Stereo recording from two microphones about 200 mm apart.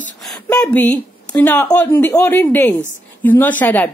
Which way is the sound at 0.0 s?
5° left (ahead or behind).